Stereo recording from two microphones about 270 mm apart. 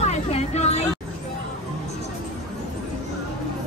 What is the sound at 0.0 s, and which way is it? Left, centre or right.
Vehicle, left.